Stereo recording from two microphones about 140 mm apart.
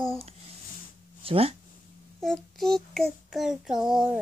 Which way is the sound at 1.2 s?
45° right (ahead or behind).